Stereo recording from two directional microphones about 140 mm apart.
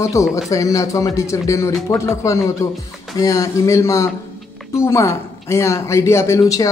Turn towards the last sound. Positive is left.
turn(degrees=20)  # may be behind; listen again after turning